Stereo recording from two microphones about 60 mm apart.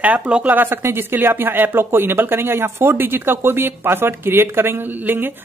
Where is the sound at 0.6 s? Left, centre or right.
Right.